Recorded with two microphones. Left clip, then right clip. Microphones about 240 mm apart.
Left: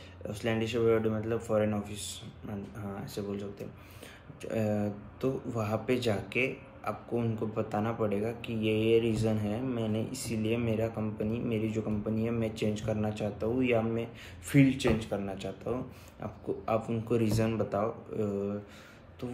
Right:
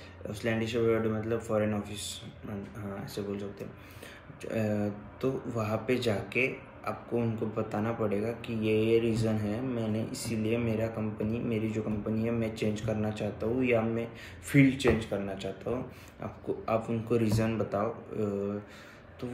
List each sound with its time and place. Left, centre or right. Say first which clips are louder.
0.4 s speech: even; centre
4.5 s speech: even; centre